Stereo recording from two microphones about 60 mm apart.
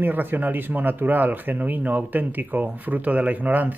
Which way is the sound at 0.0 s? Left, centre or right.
Right.